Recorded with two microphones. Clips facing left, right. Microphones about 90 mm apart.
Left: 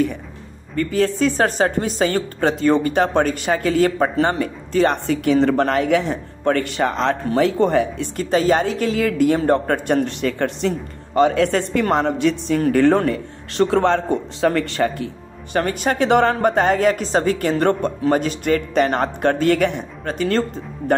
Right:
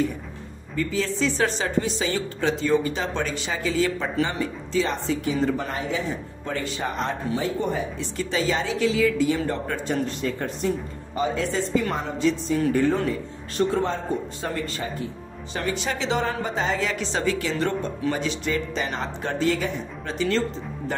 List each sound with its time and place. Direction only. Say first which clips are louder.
0.7 s a woman's voice: left 7 dB; 55° left (ahead or behind)
12.7 s speech: left 7 dB; 80° left
15.5 s a woman's voice: left 8 dB; 50° left (ahead or behind)